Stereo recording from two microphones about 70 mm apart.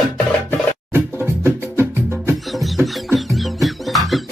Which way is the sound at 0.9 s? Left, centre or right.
Right.